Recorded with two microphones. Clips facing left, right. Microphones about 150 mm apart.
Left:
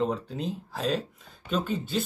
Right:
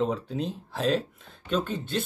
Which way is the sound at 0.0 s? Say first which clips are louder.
Right 1 dB; centre (ahead or behind).